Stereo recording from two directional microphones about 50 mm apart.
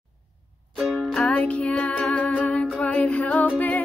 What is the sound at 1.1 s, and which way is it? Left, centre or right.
Music, left.